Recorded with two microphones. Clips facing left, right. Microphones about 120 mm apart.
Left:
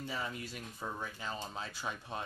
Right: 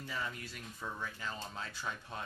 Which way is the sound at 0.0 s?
20° left (ahead or behind).